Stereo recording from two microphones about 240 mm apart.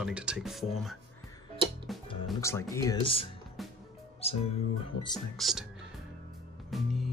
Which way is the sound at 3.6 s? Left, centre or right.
Centre.